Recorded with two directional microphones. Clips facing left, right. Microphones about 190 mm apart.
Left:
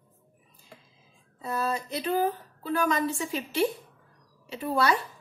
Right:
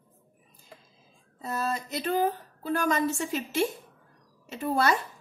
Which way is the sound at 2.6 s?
45° right (ahead or behind).